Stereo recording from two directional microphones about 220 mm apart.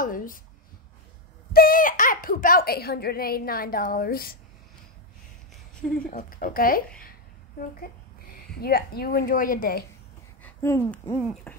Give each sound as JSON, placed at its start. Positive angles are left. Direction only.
{"t": 0.0, "sound": "speech", "side_deg": 40}
{"t": 1.5, "sound": "a child's voice", "side_deg": 40}
{"t": 6.0, "sound": "a woman's voice", "side_deg": 40}
{"t": 8.5, "sound": "a child's voice", "side_deg": 45}
{"t": 10.4, "sound": "speech", "side_deg": 10}
{"t": 11.5, "sound": "a sound", "side_deg": 10}